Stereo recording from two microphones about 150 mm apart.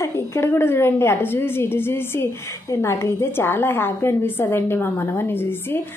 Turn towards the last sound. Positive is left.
turn(degrees=15)  # may be behind; listen again after turning